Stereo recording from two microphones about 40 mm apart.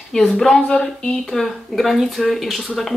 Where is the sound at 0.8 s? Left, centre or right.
Left.